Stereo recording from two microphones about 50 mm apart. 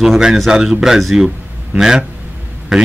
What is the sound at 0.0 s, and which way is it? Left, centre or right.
A man's voice, centre.